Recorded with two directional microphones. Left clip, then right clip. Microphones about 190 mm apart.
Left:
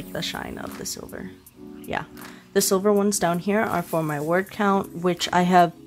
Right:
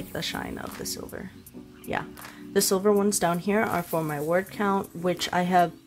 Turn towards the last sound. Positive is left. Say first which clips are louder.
# left 5 dB
turn(degrees=25)  # may be behind; listen again after turning